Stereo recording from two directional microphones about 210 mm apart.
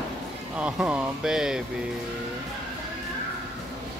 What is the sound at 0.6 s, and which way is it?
Speech, 5° right (ahead or behind).